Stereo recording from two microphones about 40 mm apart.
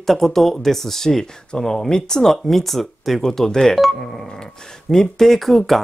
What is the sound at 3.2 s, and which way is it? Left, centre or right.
Speech, centre.